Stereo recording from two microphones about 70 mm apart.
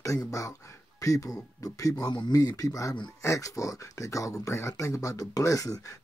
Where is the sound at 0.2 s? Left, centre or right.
Left.